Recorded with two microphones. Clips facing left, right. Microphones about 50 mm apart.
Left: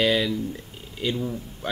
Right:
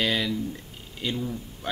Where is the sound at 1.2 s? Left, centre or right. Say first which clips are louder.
Left 2 dB; centre.